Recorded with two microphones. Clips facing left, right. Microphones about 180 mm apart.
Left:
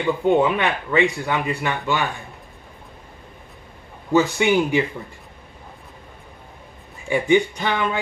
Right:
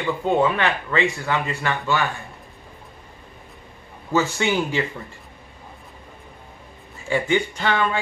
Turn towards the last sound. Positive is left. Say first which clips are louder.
# right 1 dB
turn(degrees=15)  # may be behind; listen again after turning